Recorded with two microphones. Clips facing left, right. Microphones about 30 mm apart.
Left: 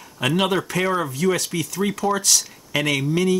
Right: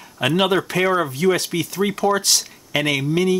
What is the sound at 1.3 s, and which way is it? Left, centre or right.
Speech, right.